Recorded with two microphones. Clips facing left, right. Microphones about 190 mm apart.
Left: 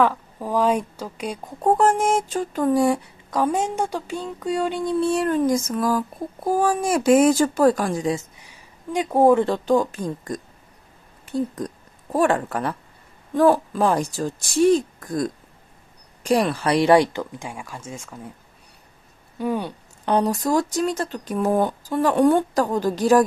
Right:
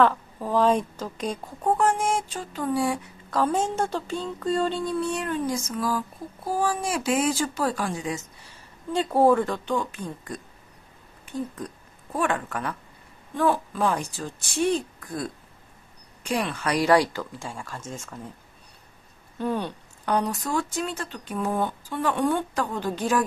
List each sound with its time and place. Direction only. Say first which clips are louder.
0.0 s speech: left 1 dB; 10° left (ahead or behind)
1.6 s speech: left 5 dB; 40° left (ahead or behind)
3.3 s speech: left 2 dB; 15° left (ahead or behind)
5.0 s child singing: left 7 dB; 45° left (ahead or behind)
8.4 s speech: even; 15° left (ahead or behind)
9.5 s speech: left 8 dB; 40° left (ahead or behind)
11.5 s a woman's voice: left 6 dB; 40° left (ahead or behind); by 18.3 s 10° left (ahead or behind)
19.3 s speech: left 3 dB; 10° left (ahead or behind)
20.1 s speech: left 5 dB; 35° left (ahead or behind)